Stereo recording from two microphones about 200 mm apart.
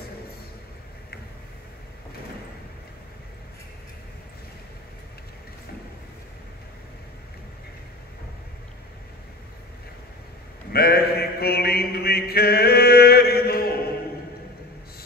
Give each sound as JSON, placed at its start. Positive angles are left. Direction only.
{"t": 10.7, "sound": "mantra", "side_deg": 50}